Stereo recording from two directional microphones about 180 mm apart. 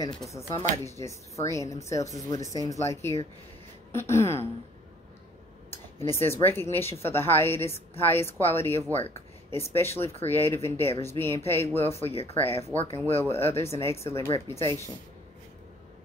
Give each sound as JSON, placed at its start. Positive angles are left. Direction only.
{"t": 0.3, "sound": "speech", "side_deg": 15}
{"t": 5.7, "sound": "speech", "side_deg": 15}